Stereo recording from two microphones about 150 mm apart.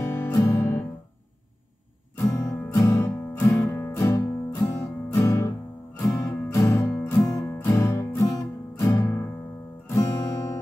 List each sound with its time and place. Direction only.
0.0 s music: 20° left (ahead or behind)
2.1 s music: 20° left (ahead or behind)
9.8 s guitar: 20° left (ahead or behind)